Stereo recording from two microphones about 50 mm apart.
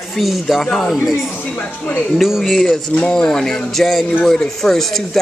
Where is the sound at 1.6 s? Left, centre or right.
Left.